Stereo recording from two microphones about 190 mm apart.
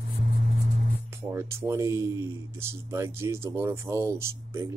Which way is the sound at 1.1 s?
15° right (ahead or behind).